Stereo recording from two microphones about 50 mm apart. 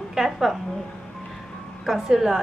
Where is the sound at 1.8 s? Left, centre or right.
Centre.